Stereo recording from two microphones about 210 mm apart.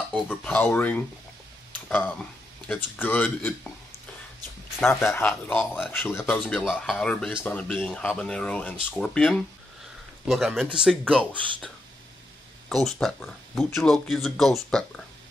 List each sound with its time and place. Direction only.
0.1 s speech: 5° left (ahead or behind)
4.7 s speech: 10° left (ahead or behind)